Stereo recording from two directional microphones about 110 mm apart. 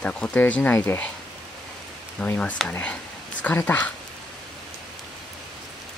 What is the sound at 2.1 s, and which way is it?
Speech, 15° left (ahead or behind).